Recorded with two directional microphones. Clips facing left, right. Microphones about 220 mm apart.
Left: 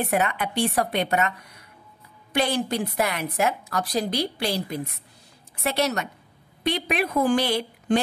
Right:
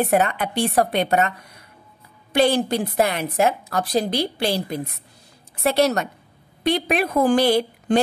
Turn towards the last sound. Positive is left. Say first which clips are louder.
# right 4 dB
turn(degrees=-35)  # may be behind; listen again after turning